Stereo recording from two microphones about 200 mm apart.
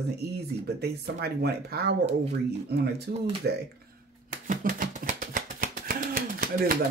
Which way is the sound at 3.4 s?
55° right (ahead or behind).